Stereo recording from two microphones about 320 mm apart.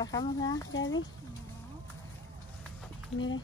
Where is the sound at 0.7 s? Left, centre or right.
Left.